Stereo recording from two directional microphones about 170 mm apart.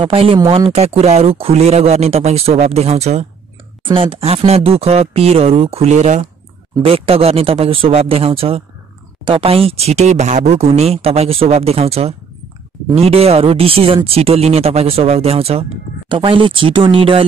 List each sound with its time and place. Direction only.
0.0 s speech: 30° right (ahead or behind)